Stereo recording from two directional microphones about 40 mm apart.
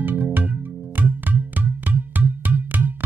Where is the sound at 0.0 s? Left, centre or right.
Right.